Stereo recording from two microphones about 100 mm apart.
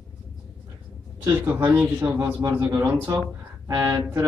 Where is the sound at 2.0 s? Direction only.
20° right (ahead or behind).